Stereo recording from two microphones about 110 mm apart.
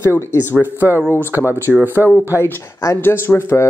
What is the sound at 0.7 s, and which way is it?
Speech, 20° right (ahead or behind).